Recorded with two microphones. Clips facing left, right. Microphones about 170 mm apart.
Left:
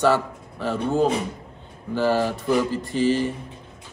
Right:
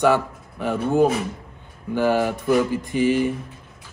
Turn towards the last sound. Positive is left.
turn(degrees=-15)  # may be behind; listen again after turning